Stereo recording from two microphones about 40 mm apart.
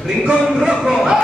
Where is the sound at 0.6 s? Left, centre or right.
Centre.